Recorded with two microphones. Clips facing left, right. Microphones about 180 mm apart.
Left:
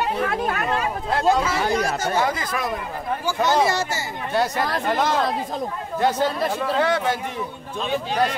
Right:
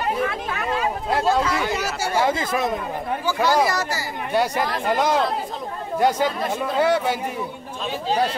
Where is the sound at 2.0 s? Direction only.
10° right (ahead or behind).